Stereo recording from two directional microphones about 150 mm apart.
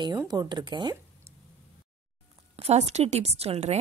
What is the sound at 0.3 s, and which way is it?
Speech, 30° right (ahead or behind).